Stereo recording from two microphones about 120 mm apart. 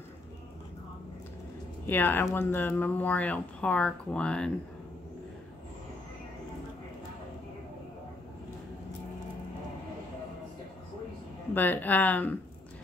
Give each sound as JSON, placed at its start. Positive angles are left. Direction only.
{"t": 1.9, "sound": "speech", "side_deg": 15}
{"t": 11.5, "sound": "speech", "side_deg": 15}